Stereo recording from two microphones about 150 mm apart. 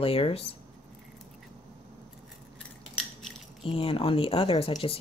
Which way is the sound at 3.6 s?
35° left (ahead or behind).